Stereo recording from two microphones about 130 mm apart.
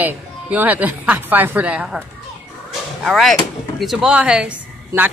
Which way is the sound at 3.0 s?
Centre (ahead or behind).